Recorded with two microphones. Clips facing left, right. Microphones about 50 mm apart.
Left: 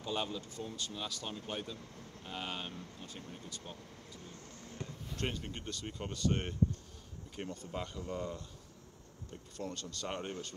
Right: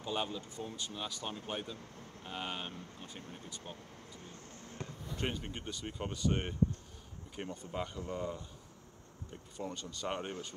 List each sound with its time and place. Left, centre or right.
0.0 s speech: centre
4.3 s a sound: right
5.1 s speech: centre
7.5 s speech: centre
9.6 s speech: centre